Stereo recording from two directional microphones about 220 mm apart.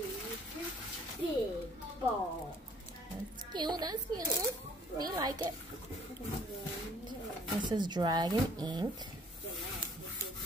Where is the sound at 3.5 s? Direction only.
20° right (ahead or behind).